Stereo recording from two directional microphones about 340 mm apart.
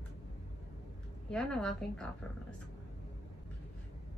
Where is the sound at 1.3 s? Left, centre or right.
Centre.